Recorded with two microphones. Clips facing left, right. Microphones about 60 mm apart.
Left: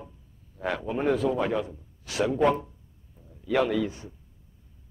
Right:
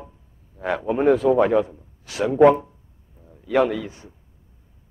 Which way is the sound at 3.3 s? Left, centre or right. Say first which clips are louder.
Left 3 dB; right.